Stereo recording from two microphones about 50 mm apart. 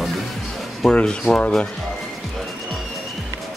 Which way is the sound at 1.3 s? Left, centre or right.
Left.